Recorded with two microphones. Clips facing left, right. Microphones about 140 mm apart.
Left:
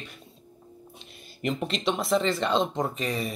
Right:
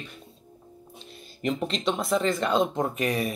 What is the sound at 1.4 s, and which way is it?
Speech, centre (ahead or behind).